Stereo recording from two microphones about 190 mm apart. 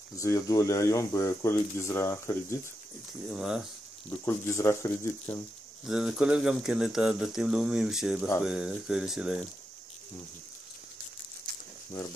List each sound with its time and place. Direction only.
0.2 s speech: 15° left (ahead or behind)
3.3 s speech: centre (ahead or behind)
4.1 s speech: 15° left (ahead or behind)
5.9 s speech: centre (ahead or behind)